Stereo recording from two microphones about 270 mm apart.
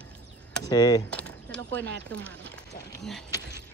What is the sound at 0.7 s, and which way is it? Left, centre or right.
Speech, centre.